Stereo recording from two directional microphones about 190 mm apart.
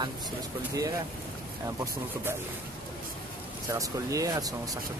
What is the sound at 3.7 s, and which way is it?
Speech, 15° right (ahead or behind).